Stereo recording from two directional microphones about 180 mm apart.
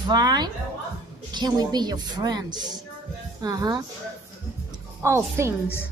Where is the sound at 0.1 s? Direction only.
20° right (ahead or behind).